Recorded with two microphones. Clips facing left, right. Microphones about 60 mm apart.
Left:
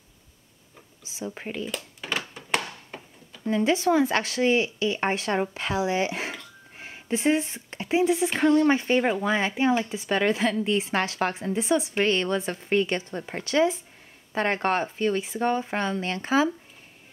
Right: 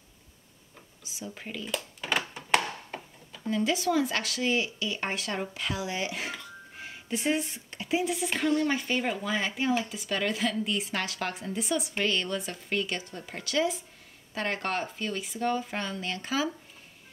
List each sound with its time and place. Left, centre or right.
1.0 s speech: left
1.7 s a sound: centre
3.4 s speech: left